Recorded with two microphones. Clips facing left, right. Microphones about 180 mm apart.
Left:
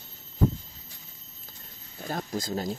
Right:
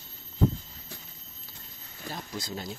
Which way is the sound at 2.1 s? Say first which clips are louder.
Left 7 dB; 45° left (ahead or behind).